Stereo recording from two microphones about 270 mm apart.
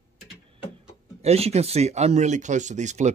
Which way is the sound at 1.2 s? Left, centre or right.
Right.